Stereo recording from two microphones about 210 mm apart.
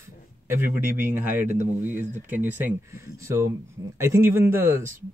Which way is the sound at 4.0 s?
15° right (ahead or behind).